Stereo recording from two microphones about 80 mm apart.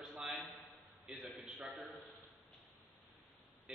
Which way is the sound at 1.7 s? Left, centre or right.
Centre.